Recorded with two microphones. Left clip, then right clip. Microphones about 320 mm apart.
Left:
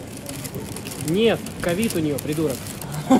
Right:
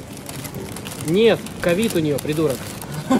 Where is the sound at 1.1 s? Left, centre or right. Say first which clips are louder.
Right 4 dB; right.